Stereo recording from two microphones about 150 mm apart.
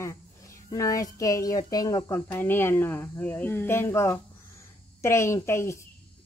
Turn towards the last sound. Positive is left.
turn(degrees=15)  # may be behind; listen again after turning